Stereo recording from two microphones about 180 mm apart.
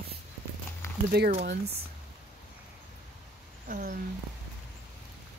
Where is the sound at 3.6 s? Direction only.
50° right (ahead or behind).